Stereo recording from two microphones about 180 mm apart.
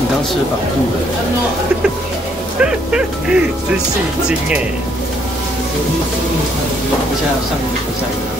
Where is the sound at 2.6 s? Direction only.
5° right (ahead or behind).